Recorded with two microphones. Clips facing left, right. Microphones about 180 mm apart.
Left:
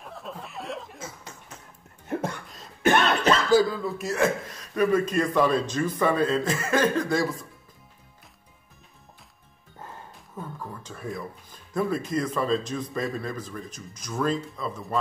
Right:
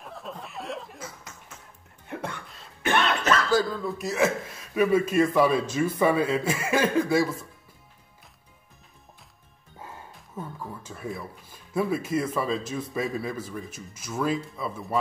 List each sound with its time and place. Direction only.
0.0 s chuckle: centre (ahead or behind)
0.9 s cough: 25° left (ahead or behind)
2.0 s cough: 40° left (ahead or behind)
3.4 s speech: 15° left (ahead or behind)
3.8 s a man's voice: centre (ahead or behind)
10.3 s a sound: 10° right (ahead or behind)
11.7 s a man's voice: 5° right (ahead or behind)